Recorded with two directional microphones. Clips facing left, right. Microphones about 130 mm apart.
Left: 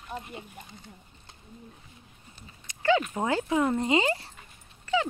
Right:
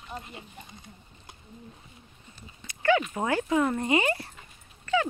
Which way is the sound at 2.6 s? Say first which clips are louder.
Right 4 dB; 90° right.